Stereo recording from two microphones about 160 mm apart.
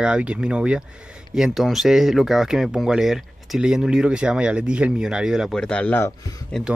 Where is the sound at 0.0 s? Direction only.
5° right (ahead or behind); by 6.1 s 10° left (ahead or behind).